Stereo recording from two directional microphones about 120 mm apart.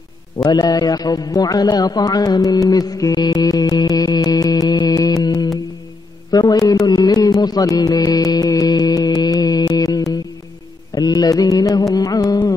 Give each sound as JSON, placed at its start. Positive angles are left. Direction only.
{"t": 0.4, "sound": "a man's voice", "side_deg": 35}
{"t": 6.3, "sound": "carnatic music", "side_deg": 30}
{"t": 11.0, "sound": "music", "side_deg": 35}
{"t": 11.9, "sound": "carnatic music", "side_deg": 30}